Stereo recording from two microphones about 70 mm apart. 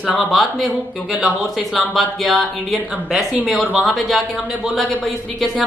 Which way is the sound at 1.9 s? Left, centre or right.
Centre.